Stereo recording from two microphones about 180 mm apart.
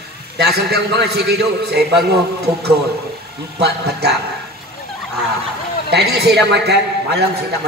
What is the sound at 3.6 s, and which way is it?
Speech, 65° right (ahead or behind).